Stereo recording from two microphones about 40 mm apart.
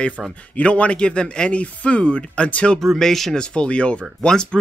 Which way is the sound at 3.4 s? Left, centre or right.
Left.